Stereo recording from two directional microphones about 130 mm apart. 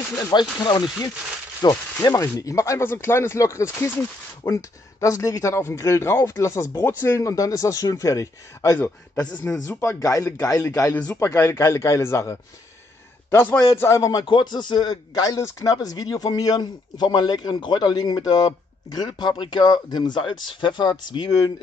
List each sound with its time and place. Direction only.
0.2 s a man's voice: 35° left (ahead or behind)